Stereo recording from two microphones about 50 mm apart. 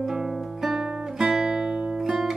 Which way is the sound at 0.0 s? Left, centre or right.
Centre.